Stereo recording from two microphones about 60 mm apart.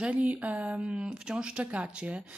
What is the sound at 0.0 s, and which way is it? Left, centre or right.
Speech, right.